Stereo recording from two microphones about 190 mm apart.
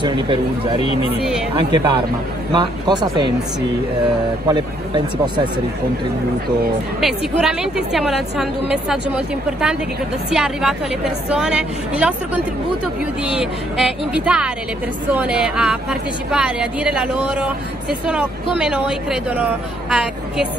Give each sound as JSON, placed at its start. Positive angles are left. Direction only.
{"t": 0.0, "sound": "speech", "side_deg": -25}
{"t": 4.5, "sound": "speech", "side_deg": -20}
{"t": 7.0, "sound": "a woman's voice", "side_deg": 0}